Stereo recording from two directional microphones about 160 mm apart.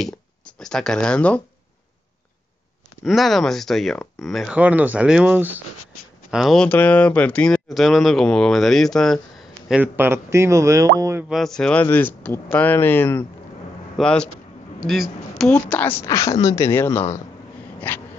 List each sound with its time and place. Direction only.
0.0 s speech: 5° left (ahead or behind)
3.0 s speech: centre (ahead or behind)
6.3 s speech: centre (ahead or behind)
9.7 s speech: 10° right (ahead or behind)
11.2 s a woman's voice: centre (ahead or behind)
17.7 s a sound: 10° left (ahead or behind)